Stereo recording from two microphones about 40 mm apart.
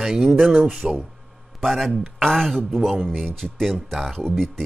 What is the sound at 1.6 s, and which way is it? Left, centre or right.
Speech, centre.